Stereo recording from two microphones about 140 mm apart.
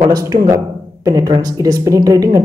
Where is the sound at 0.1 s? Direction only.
25° right (ahead or behind).